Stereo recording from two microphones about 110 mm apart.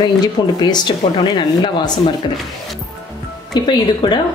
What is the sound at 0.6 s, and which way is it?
Speech, 45° left (ahead or behind).